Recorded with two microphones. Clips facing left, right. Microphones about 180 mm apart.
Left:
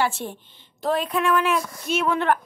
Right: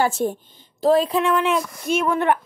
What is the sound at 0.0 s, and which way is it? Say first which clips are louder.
A woman's voice: right 5 dB; 45° right (ahead or behind).